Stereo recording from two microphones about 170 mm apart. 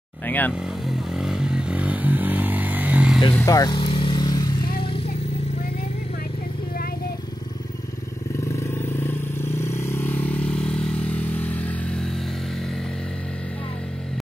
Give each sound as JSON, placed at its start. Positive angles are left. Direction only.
{"t": 0.5, "sound": "motorcycle", "side_deg": 0}
{"t": 3.3, "sound": "vehicle", "side_deg": 20}
{"t": 8.5, "sound": "vehicle", "side_deg": 15}